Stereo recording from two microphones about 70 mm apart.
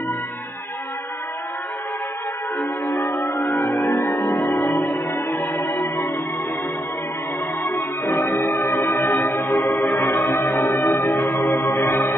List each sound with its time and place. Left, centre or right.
2.6 s music: left
3.7 s music: left
4.1 s music: left
7.6 s music: left
10.1 s music: left